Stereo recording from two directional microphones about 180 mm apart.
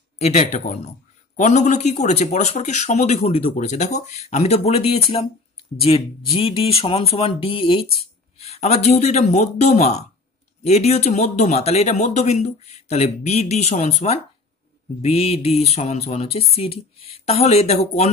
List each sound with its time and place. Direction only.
0.2 s a man's voice: 40° left (ahead or behind)